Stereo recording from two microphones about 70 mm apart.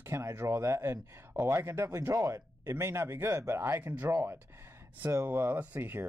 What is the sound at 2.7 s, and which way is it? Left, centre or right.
Speech, right.